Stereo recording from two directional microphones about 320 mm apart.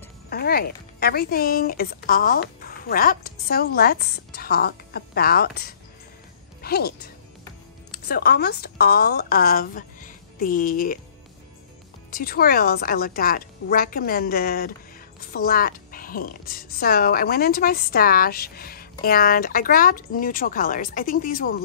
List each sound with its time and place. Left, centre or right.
0.3 s a woman's voice: left
7.9 s a woman's voice: left
12.1 s a woman's voice: left